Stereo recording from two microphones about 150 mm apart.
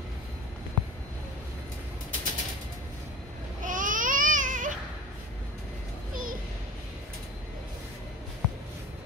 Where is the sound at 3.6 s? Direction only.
60° right (ahead or behind).